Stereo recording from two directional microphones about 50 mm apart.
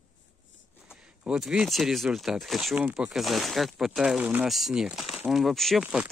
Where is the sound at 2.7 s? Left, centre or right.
Right.